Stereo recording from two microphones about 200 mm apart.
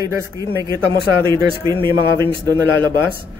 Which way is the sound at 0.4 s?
15° right (ahead or behind).